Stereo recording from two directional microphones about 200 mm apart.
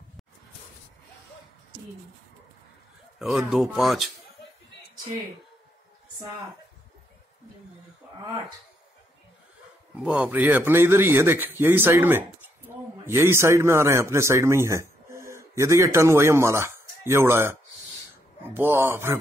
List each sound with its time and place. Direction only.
3.2 s speech: centre (ahead or behind)
9.9 s speech: 5° right (ahead or behind)
12.7 s a sound: 10° right (ahead or behind)
13.0 s a man's voice: 10° right (ahead or behind)